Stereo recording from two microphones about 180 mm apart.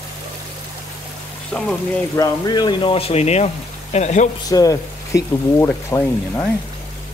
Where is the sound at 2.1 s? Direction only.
20° left (ahead or behind); by 4.3 s 40° left (ahead or behind).